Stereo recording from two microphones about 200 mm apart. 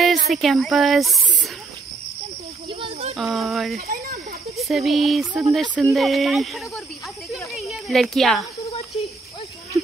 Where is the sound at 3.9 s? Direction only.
45° right (ahead or behind).